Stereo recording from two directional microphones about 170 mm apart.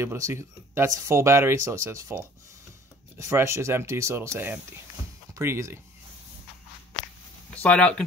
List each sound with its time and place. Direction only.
0.0 s speech: 15° right (ahead or behind)
7.5 s speech: 5° left (ahead or behind)